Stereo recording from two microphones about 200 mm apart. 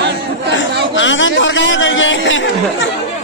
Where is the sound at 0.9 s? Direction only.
70° left (ahead or behind).